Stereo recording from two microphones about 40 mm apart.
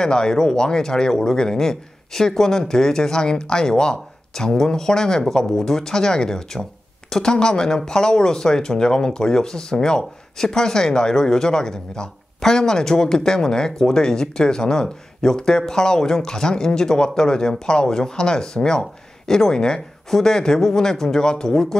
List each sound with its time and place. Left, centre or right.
0.0 s speech: centre